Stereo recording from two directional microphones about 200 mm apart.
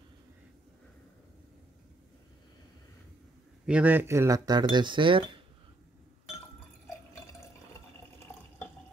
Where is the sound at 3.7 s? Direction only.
10° right (ahead or behind); by 5.3 s 25° right (ahead or behind).